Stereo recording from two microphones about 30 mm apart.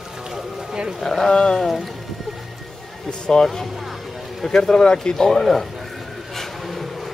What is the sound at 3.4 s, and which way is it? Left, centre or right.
Speech, centre.